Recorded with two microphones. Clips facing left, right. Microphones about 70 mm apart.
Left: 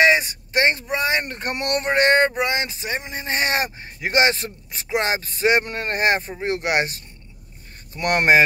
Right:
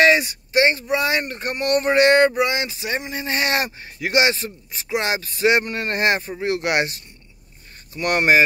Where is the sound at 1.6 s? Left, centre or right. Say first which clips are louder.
Right 5 dB; left.